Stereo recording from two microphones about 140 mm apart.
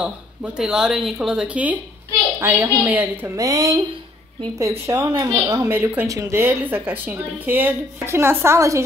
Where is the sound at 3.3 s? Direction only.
25° right (ahead or behind).